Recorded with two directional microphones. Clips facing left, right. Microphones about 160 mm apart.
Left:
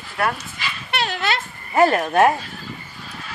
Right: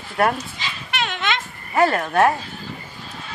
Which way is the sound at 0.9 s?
35° left (ahead or behind).